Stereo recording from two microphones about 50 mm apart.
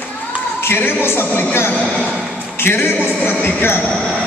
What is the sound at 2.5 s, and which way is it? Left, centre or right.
Speech, left.